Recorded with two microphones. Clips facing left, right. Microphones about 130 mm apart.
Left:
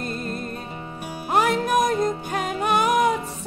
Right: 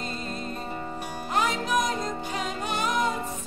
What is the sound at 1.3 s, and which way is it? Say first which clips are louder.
Music: left 6 dB; 55° left (ahead or behind).